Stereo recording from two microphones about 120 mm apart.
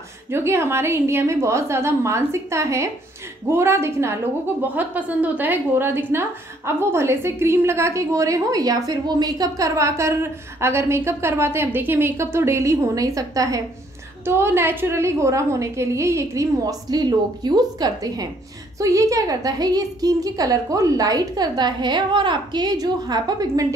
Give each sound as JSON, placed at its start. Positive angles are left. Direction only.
{"t": 0.3, "sound": "a woman's voice", "side_deg": -20}